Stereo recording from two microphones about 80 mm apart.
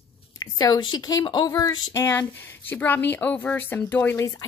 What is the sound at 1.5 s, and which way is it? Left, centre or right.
Speech, left.